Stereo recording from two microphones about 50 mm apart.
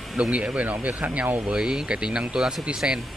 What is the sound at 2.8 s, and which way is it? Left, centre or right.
Speech, right.